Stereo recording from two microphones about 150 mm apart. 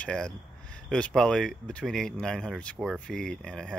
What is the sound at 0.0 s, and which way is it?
Speech, 5° left (ahead or behind).